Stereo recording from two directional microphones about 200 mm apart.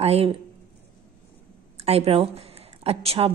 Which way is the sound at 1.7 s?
30° right (ahead or behind).